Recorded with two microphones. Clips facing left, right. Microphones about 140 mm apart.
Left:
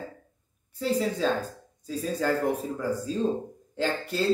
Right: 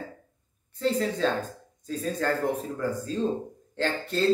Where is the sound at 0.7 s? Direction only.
10° left (ahead or behind).